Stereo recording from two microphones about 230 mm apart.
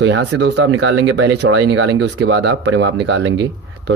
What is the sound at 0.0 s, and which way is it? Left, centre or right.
Speech, right.